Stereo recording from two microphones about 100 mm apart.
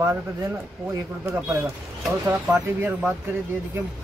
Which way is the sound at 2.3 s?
20° right (ahead or behind).